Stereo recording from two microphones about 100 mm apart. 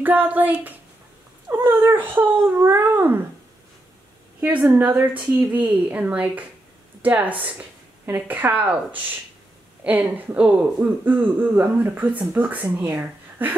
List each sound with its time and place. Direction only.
0.0 s speech: 20° right (ahead or behind)
4.4 s a woman's voice: 15° right (ahead or behind)